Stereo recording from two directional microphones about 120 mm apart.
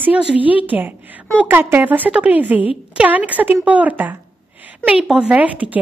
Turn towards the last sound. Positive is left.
turn(degrees=-10)  # may be behind; listen again after turning